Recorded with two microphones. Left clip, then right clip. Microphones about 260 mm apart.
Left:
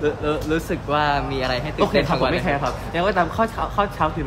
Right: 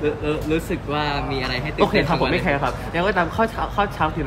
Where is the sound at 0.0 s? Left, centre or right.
Centre.